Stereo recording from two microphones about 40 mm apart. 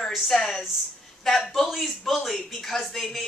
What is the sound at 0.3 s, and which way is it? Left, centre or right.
Speech, centre.